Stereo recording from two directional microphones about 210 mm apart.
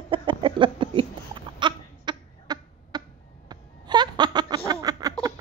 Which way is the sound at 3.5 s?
20° right (ahead or behind).